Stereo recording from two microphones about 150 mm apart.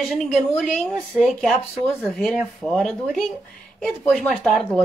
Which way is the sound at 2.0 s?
5° left (ahead or behind).